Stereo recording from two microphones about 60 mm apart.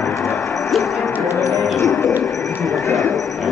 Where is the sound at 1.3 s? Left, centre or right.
Left.